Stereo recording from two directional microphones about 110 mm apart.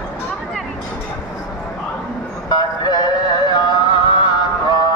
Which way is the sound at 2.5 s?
40° left (ahead or behind).